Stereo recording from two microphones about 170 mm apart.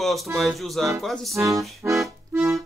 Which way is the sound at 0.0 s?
Centre (ahead or behind).